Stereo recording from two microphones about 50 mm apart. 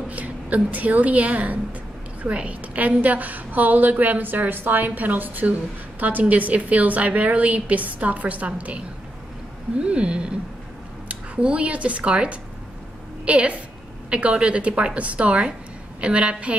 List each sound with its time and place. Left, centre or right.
0.1 s a woman's voice: right